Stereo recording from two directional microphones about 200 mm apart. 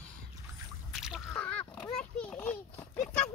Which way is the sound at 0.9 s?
Centre (ahead or behind).